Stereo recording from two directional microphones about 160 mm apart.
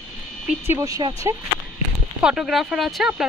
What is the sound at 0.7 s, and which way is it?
Speech, 20° right (ahead or behind).